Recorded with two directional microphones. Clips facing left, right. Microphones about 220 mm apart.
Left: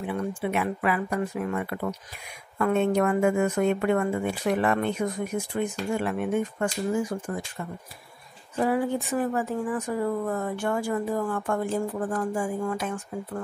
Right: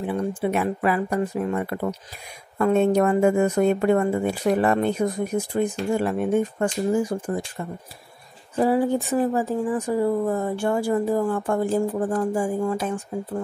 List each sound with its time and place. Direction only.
0.0 s speech: 35° right (ahead or behind)
8.5 s speech: 30° right (ahead or behind)